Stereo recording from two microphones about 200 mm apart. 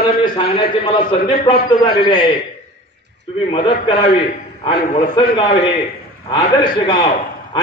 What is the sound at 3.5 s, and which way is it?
A man's voice, 25° left (ahead or behind).